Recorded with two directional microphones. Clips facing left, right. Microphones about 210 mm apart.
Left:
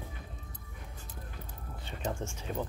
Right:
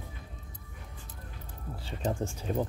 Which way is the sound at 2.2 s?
35° right (ahead or behind).